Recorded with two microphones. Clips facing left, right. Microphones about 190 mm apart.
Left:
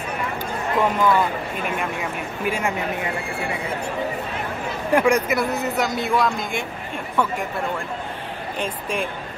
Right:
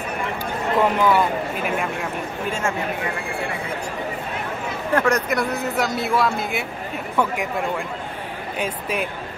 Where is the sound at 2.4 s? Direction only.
15° left (ahead or behind).